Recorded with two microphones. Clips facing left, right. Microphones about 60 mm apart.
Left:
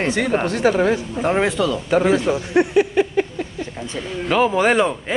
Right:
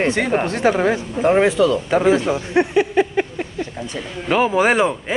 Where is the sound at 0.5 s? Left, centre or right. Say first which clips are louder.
Even; right.